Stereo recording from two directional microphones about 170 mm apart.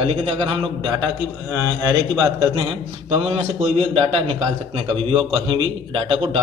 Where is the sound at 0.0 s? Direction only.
30° right (ahead or behind).